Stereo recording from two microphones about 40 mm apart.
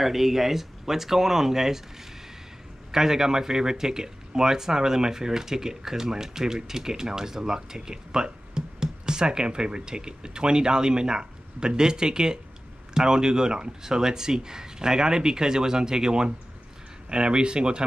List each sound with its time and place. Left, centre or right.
0.0 s speech: centre
2.9 s speech: centre